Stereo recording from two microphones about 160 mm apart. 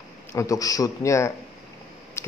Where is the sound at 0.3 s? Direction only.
20° left (ahead or behind).